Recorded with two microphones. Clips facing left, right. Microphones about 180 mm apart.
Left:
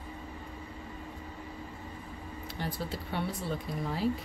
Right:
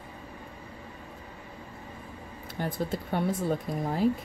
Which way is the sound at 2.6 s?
50° right (ahead or behind).